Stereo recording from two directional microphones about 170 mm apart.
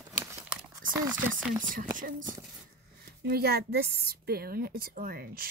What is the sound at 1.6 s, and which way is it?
Speech, 50° right (ahead or behind).